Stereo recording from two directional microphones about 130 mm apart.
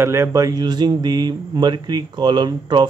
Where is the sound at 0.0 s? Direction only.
20° right (ahead or behind).